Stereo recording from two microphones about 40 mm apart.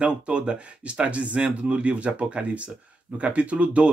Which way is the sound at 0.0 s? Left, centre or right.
Right.